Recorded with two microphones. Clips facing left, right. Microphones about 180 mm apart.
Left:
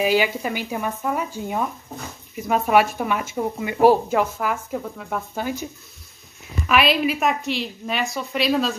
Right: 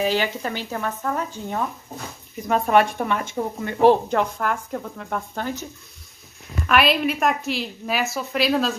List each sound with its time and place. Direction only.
0.0 s a woman's voice: 10° left (ahead or behind)
6.7 s a woman's voice: centre (ahead or behind)